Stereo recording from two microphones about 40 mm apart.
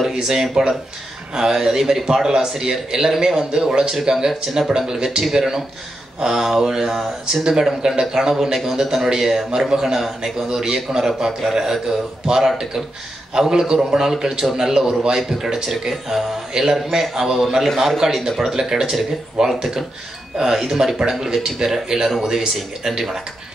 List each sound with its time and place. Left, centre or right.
0.1 s a man's voice: centre